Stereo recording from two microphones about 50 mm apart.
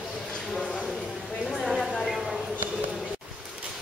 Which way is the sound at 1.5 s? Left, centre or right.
Centre.